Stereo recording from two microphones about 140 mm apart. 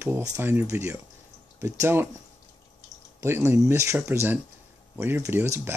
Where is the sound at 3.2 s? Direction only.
20° right (ahead or behind).